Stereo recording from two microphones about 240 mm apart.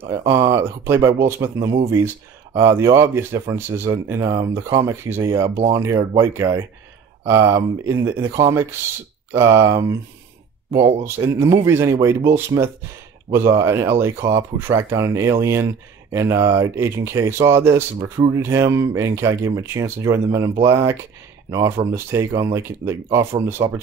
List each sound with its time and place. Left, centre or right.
0.2 s speech: centre
11.1 s speech: centre
23.0 s speech: right